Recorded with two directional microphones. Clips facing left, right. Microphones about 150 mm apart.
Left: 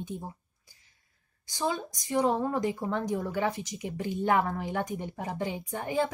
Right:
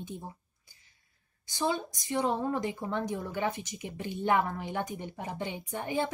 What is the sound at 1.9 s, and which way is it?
Speech, 40° left (ahead or behind).